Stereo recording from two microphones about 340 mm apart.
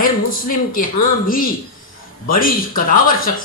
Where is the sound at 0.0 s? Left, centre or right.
Left.